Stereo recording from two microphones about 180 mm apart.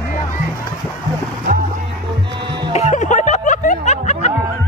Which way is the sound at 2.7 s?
40° left (ahead or behind).